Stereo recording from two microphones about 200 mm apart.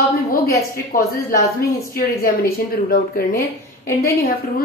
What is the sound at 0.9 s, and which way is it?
Speech, 45° left (ahead or behind).